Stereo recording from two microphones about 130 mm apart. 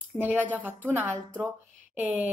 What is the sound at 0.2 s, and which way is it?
Speech, 15° right (ahead or behind).